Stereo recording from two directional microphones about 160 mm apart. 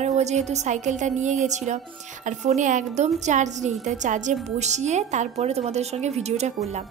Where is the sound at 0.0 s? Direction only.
45° right (ahead or behind).